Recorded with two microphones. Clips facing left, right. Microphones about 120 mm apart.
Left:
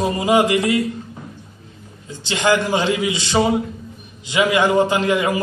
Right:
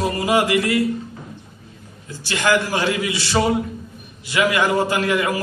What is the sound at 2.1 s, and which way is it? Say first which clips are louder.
A man's voice: left 1 dB; 20° left (ahead or behind).